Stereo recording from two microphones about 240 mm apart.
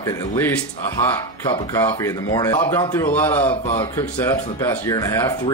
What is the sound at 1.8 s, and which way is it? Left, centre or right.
Speech, centre.